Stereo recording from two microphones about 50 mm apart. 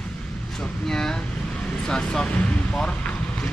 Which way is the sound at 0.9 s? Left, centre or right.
Centre.